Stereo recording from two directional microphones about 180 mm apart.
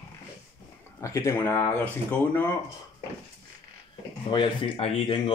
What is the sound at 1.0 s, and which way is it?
Speech, 15° left (ahead or behind).